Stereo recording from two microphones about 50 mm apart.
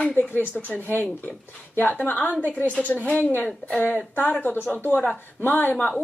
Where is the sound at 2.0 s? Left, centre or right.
Left.